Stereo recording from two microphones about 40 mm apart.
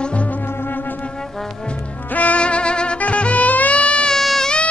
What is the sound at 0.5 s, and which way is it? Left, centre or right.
Music, left.